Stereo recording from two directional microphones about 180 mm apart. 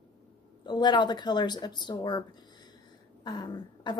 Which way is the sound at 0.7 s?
25° left (ahead or behind).